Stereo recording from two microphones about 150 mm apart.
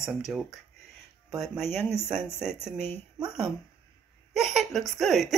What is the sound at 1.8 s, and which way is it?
Speech, 15° left (ahead or behind).